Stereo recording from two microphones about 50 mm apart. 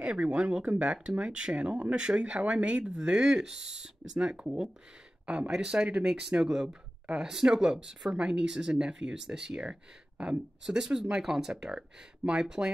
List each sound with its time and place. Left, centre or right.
0.0 s speech: right
6.3 s speech: centre